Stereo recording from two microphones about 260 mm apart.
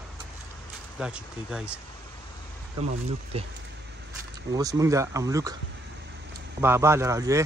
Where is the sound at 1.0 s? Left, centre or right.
Centre.